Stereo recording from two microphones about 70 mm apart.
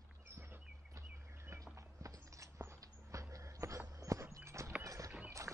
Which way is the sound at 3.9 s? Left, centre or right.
Right.